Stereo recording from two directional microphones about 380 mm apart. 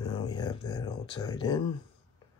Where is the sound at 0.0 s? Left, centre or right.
Centre.